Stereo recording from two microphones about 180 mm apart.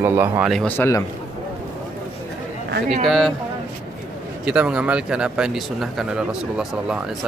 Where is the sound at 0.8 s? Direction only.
15° left (ahead or behind).